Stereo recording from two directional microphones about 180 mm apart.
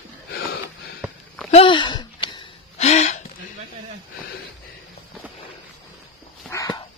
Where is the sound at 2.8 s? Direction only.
40° left (ahead or behind).